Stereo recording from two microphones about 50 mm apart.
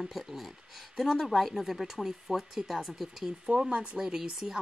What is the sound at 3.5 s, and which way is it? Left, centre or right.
Speech, centre.